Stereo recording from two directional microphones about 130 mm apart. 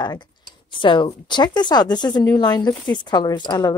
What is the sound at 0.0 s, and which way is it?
Speech, 35° left (ahead or behind).